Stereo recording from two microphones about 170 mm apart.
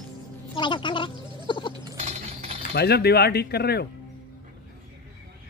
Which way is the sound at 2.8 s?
70° left (ahead or behind).